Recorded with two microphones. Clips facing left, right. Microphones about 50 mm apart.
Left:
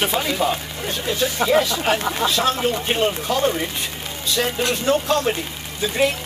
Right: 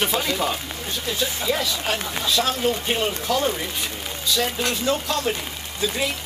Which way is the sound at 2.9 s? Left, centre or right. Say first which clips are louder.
Left 3 dB; centre.